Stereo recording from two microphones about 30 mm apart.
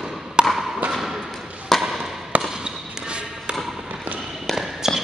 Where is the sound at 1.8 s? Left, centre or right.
Centre.